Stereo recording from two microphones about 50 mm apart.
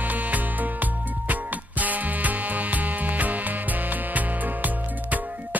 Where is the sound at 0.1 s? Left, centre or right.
Right.